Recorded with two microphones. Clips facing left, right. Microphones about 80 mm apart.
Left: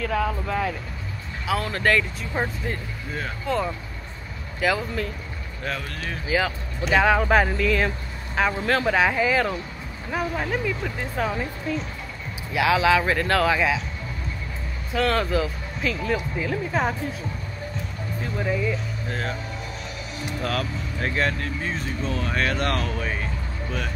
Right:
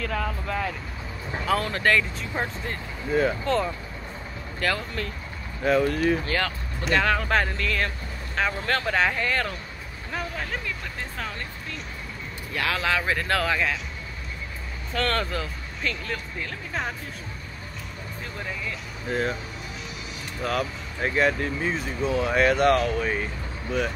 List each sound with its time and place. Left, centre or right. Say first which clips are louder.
0.0 s speech: left 4 dB; centre
5.6 s speech: right 10 dB; centre
6.2 s speech: left 3 dB; centre
14.9 s speech: left 4 dB; centre
18.2 s speech: left 9 dB; centre
19.0 s speech: right 5 dB; centre
20.4 s speech: right 2 dB; centre